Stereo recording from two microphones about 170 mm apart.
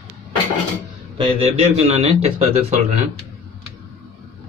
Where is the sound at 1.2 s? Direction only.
35° right (ahead or behind).